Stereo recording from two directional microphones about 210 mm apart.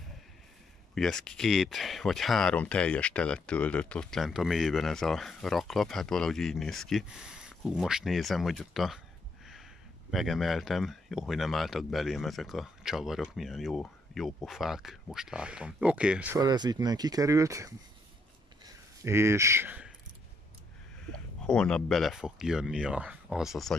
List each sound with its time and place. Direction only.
0.9 s speech: centre (ahead or behind)
10.1 s speech: centre (ahead or behind)
16.3 s speech: 20° right (ahead or behind)
18.6 s a sound: 15° right (ahead or behind)
21.1 s speech: 5° left (ahead or behind)